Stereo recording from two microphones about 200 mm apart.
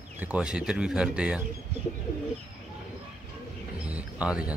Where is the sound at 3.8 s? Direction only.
5° right (ahead or behind).